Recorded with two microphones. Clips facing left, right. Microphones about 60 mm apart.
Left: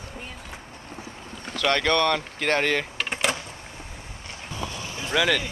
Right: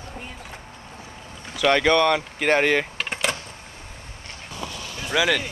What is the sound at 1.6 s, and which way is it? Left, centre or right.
Speech, centre.